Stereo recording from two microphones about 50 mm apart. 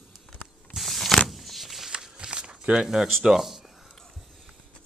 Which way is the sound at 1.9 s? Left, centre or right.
Centre.